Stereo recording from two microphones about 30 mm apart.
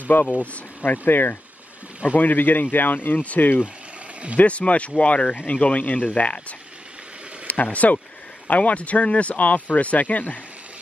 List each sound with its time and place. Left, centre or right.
0.1 s speech: left
4.4 s speech: left
5.9 s speech: left
7.4 s speech: left
9.7 s speech: left